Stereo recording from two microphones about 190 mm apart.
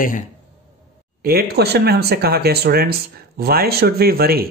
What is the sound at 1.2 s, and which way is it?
Speech, 55° right (ahead or behind).